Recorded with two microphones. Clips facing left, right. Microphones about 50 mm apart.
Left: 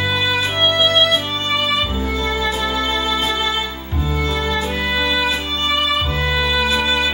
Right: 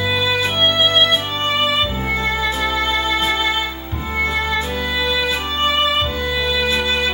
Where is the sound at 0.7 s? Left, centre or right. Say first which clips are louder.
Left 1 dB; right.